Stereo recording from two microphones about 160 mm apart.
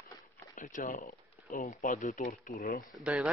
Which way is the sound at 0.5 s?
55° left (ahead or behind).